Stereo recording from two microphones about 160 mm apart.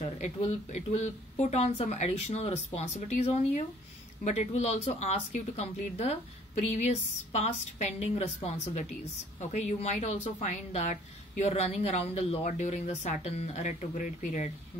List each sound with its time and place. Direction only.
0.0 s speech: 45° left (ahead or behind)